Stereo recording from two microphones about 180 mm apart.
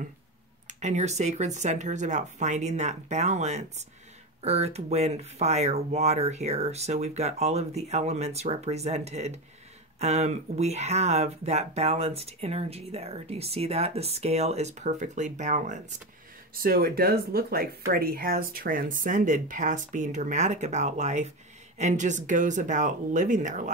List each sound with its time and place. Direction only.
0.7 s speech: 40° right (ahead or behind)
16.6 s speech: 55° right (ahead or behind)